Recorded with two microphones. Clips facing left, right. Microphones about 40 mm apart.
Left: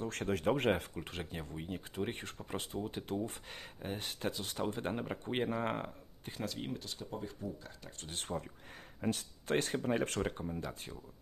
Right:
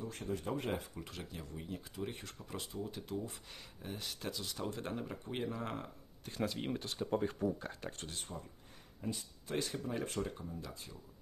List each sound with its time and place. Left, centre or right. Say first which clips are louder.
0.0 s speech: left 6 dB; left
1.2 s speech: left 4 dB; left
2.0 s speech: left 4 dB; left
6.4 s speech: right 3 dB; centre
7.1 s speech: right 9 dB; right
8.3 s speech: left 12 dB; left
9.0 s speech: left 6 dB; left
9.6 s speech: left 4 dB; left